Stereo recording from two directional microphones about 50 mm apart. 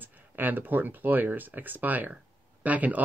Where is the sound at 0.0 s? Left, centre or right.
Right.